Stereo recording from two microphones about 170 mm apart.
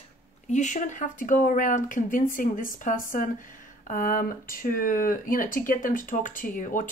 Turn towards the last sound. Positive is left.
turn(degrees=50)  # may be behind; listen again after turning